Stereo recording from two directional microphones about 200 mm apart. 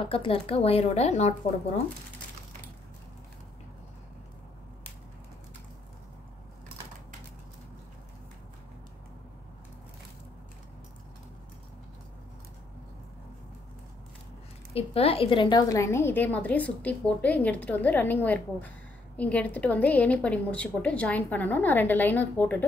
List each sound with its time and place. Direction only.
0.0 s speech: 25° left (ahead or behind)
14.7 s a woman's voice: 30° left (ahead or behind); by 22.7 s 10° left (ahead or behind)